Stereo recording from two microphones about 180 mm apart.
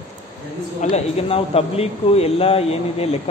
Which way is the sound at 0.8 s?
35° left (ahead or behind).